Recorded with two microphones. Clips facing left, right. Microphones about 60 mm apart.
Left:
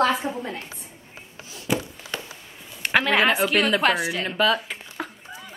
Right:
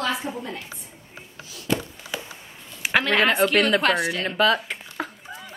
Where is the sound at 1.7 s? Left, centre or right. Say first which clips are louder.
Even; centre.